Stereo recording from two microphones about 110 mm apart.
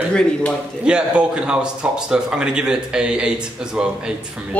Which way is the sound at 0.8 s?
10° right (ahead or behind).